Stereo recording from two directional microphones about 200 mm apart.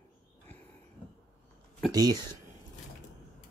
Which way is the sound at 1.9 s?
20° right (ahead or behind).